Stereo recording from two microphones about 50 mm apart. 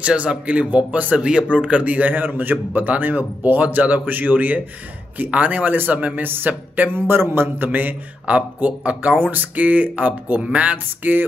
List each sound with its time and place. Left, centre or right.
0.0 s a man's voice: right